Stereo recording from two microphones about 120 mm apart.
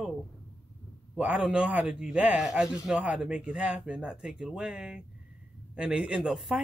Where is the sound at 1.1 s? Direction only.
10° right (ahead or behind).